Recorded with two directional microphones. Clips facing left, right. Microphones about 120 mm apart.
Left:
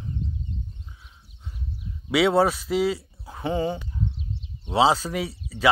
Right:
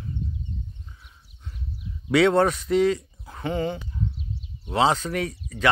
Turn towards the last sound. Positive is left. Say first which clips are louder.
# left 1 dB
turn(degrees=5)  # may be behind; listen again after turning